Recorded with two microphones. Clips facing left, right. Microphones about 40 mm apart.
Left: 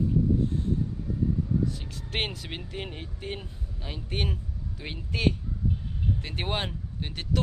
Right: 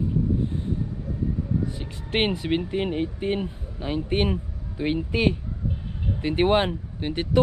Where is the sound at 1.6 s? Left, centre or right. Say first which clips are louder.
Right 1 dB; right.